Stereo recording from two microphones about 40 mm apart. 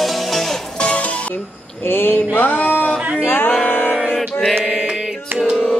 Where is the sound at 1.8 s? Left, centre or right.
Left.